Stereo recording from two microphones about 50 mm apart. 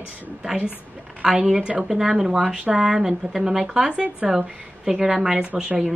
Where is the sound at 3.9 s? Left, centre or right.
Right.